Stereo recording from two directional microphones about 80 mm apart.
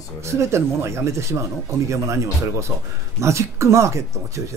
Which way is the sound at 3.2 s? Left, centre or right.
Right.